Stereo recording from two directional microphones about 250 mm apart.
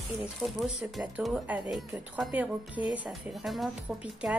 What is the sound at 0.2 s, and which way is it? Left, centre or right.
Speech, centre.